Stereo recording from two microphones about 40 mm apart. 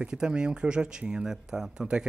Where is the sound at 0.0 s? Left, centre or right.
Right.